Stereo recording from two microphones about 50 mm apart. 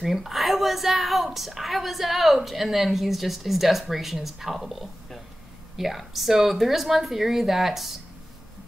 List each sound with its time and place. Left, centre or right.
0.0 s a woman's voice: centre